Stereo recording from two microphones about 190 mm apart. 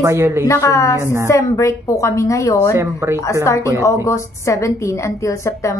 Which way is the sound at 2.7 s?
15° right (ahead or behind).